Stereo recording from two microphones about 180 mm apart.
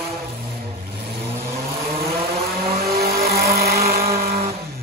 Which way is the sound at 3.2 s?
60° right (ahead or behind).